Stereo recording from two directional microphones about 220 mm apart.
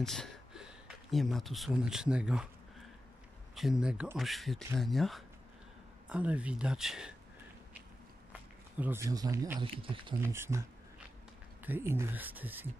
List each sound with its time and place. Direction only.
0.0 s speech: centre (ahead or behind)
3.5 s speech: centre (ahead or behind)
8.3 s speech: 5° right (ahead or behind); by 10.1 s 20° right (ahead or behind)
10.1 s speech: 10° right (ahead or behind)
11.6 s speech: 10° right (ahead or behind)